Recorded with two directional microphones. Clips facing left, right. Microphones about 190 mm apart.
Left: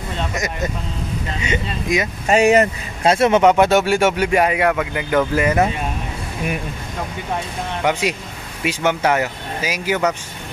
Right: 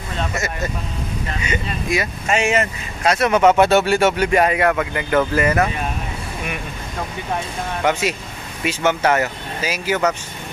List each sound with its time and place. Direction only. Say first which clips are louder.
0.3 s speech: left 1 dB; 15° left (ahead or behind)
2.2 s speech: left 7 dB; 40° left (ahead or behind); by 5.7 s 15° left (ahead or behind)
7.8 s speech: even; 15° left (ahead or behind)